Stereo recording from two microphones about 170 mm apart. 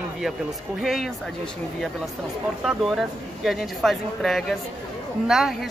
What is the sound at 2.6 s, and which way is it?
Speech, centre (ahead or behind).